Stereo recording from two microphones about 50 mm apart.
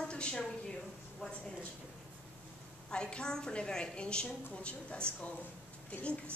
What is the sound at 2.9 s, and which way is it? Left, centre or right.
A woman's voice, centre.